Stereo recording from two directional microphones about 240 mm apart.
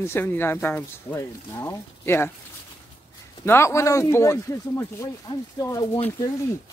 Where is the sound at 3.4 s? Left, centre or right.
Centre.